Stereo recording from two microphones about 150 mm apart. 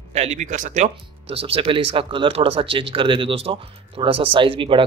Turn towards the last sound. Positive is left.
turn(degrees=-35)  # may be behind; listen again after turning